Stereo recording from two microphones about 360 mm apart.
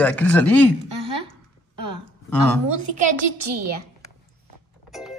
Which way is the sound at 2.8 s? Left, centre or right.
Right.